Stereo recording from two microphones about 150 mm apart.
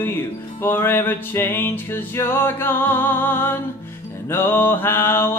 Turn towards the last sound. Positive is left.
turn(degrees=15)  # may be behind; listen again after turning